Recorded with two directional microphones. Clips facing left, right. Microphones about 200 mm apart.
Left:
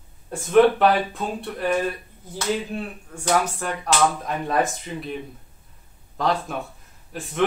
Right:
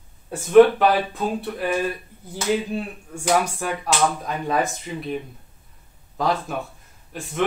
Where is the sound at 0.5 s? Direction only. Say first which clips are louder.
Right 3 dB; centre (ahead or behind).